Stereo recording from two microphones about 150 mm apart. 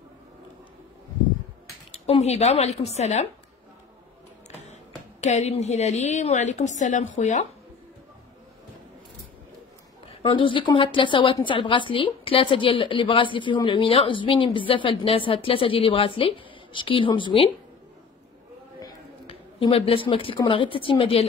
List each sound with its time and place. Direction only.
1.9 s a woman's voice: 45° left (ahead or behind)
5.2 s a woman's voice: 50° left (ahead or behind)
10.0 s a woman's voice: 35° left (ahead or behind)
19.2 s a woman's voice: 35° left (ahead or behind)